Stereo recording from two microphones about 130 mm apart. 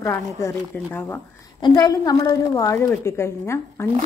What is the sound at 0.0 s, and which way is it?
A woman's voice, 20° left (ahead or behind).